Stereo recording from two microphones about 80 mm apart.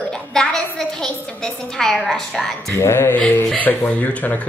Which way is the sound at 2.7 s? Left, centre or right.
Left.